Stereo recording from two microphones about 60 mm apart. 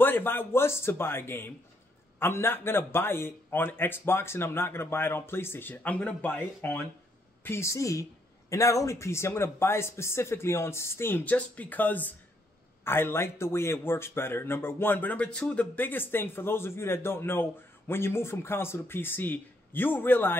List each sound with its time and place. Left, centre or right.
0.0 s speech: left
7.4 s speech: left
7.7 s speech: left
11.2 s speech: left
12.8 s speech: left